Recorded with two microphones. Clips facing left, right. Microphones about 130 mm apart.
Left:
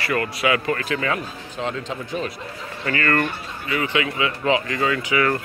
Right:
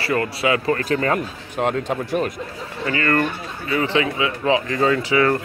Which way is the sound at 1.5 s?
55° right (ahead or behind).